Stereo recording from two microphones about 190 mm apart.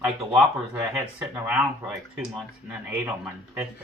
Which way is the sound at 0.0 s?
10° right (ahead or behind).